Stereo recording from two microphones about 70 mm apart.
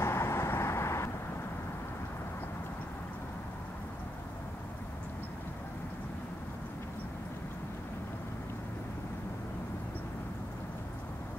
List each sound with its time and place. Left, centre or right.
0.0 s vehicle: left